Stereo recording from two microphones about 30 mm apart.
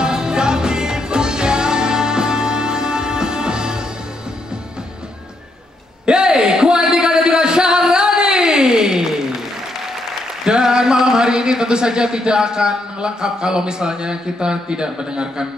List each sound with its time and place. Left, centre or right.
0.0 s music: right
6.0 s a sound: right
10.4 s speech: right